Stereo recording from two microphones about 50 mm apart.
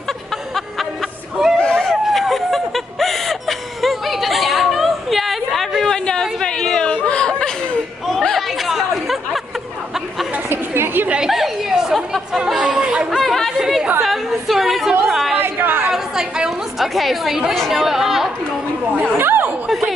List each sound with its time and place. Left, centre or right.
1.6 s a sound: centre
1.9 s a sound: centre
5.9 s a sound: centre
8.1 s chatter: centre
10.5 s chatter: right
11.2 s chatter: centre
12.8 s chatter: centre
13.1 s chatter: centre
15.3 s chatter: right
15.9 s chatter: centre
16.9 s chatter: centre
19.1 s chatter: right